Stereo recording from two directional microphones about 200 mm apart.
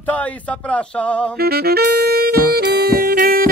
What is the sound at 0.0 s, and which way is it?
Speech, 5° left (ahead or behind).